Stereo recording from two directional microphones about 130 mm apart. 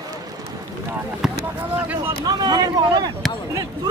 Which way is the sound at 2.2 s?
30° right (ahead or behind).